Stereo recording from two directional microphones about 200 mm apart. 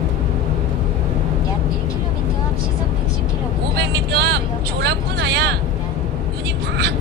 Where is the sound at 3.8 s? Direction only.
55° right (ahead or behind).